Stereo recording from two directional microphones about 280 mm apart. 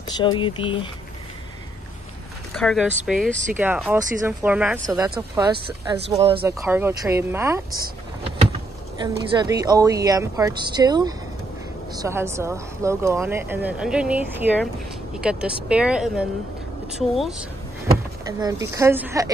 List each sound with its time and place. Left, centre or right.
0.2 s speech: centre
2.5 s speech: centre
9.0 s speech: centre